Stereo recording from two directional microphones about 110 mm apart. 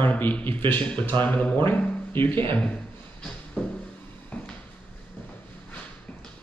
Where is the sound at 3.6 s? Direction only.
5° left (ahead or behind).